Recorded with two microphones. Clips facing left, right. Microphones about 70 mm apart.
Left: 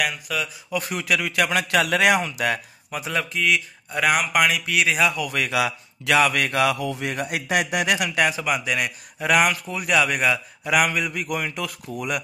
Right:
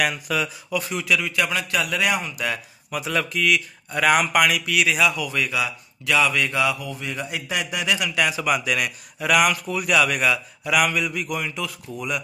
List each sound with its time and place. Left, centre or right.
0.0 s speech: centre
0.7 s speech: left
3.1 s speech: centre
3.9 s speech: centre
4.4 s speech: left
5.3 s a man's voice: left
6.1 s speech: left
8.1 s speech: left
8.4 s speech: left